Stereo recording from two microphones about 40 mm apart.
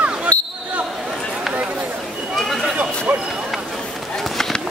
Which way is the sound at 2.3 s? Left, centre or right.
Centre.